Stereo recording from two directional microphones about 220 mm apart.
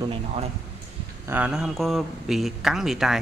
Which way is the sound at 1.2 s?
10° right (ahead or behind).